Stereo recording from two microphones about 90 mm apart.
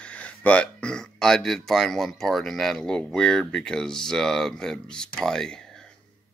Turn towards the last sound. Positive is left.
turn(degrees=5)  # may be behind; listen again after turning